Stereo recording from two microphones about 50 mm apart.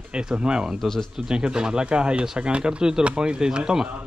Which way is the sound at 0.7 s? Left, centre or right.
Centre.